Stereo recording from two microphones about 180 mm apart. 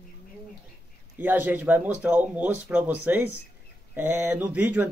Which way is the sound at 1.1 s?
10° right (ahead or behind).